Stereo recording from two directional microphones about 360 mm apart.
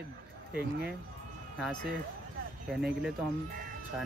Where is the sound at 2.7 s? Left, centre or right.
Centre.